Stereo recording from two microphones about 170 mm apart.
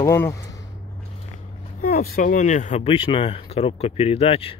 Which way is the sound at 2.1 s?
50° left (ahead or behind).